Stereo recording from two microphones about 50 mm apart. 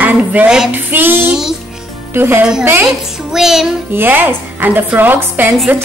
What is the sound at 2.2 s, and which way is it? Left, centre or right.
Speech, right.